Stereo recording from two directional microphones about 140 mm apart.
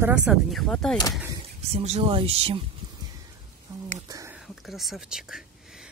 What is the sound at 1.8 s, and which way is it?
Speech, 45° right (ahead or behind).